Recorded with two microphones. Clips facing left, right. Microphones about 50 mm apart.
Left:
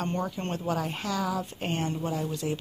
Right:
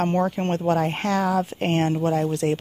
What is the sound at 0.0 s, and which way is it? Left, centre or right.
Speech, right.